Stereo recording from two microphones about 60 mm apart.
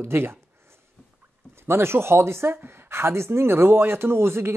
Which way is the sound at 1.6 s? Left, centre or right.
Right.